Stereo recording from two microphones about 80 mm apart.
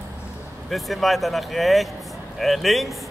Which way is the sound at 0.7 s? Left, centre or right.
Centre.